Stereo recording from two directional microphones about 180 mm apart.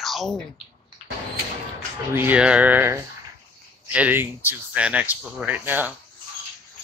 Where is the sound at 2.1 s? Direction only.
10° right (ahead or behind).